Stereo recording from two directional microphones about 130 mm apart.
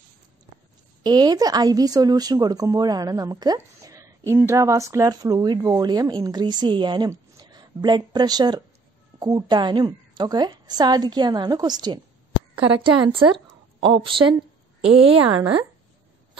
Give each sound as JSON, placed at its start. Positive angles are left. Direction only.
{"t": 1.0, "sound": "a woman's voice", "side_deg": -35}